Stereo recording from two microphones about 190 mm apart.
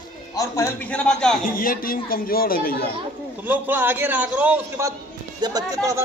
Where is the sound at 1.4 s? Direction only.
50° left (ahead or behind).